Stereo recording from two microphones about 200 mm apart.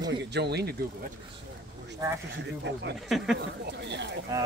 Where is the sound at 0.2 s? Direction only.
55° right (ahead or behind).